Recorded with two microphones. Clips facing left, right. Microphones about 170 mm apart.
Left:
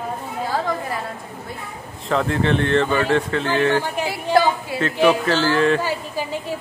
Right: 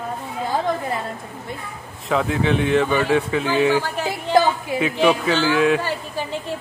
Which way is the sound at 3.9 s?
10° left (ahead or behind).